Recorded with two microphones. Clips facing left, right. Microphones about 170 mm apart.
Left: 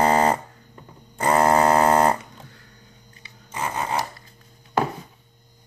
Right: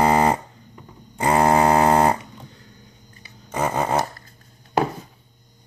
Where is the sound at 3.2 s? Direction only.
55° right (ahead or behind).